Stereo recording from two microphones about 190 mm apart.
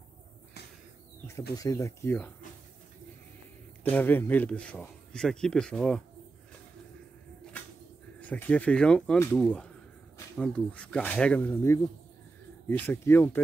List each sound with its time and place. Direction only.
1.6 s speech: 15° left (ahead or behind)
3.9 s a man's voice: 10° left (ahead or behind)
8.2 s speech: 10° left (ahead or behind)